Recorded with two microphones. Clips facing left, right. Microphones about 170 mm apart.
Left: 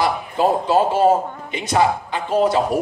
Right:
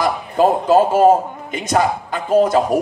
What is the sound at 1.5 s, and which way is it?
A man's voice, 45° right (ahead or behind).